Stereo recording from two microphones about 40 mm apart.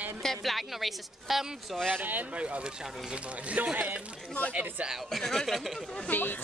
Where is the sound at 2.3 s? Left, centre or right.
Right.